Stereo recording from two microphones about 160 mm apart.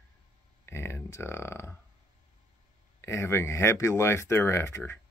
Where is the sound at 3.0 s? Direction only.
15° left (ahead or behind).